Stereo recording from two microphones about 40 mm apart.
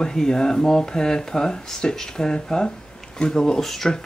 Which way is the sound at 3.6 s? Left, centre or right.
Centre.